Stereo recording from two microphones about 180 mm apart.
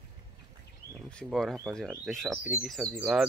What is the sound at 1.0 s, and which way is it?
Speech, 5° left (ahead or behind).